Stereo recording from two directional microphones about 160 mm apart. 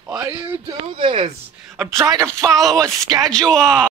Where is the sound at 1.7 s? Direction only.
Centre (ahead or behind).